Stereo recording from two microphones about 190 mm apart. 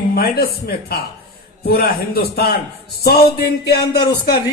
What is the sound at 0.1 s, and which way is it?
A man's voice, 55° left (ahead or behind).